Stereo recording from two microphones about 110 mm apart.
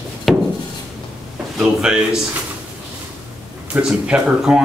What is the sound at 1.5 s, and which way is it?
Speech, 5° right (ahead or behind).